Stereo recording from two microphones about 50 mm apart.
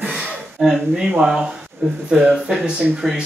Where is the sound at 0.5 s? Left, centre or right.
Centre.